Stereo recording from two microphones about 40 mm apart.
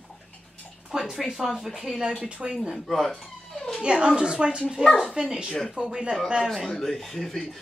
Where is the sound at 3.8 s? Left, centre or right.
Right.